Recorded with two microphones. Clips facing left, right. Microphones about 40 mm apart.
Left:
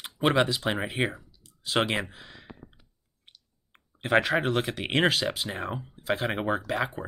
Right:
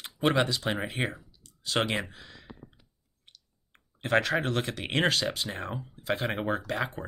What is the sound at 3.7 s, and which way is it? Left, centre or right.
Speech, centre.